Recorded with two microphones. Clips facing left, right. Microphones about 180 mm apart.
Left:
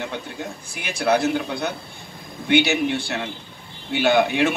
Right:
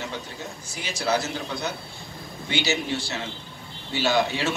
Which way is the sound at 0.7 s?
60° left (ahead or behind).